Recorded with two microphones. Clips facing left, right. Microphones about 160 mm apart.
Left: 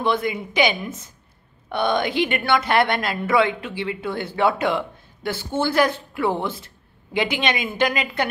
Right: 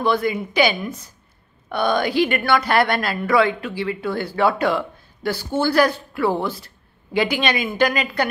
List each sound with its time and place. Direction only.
0.0 s a woman's voice: 20° left (ahead or behind)